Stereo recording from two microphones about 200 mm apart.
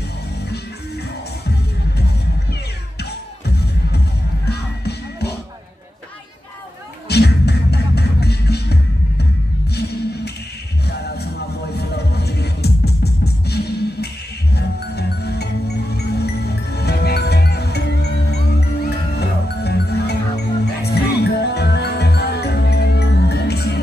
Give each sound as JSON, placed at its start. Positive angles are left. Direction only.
{"t": 3.0, "sound": "music", "side_deg": 55}
{"t": 7.1, "sound": "music", "side_deg": 55}
{"t": 11.7, "sound": "music", "side_deg": 55}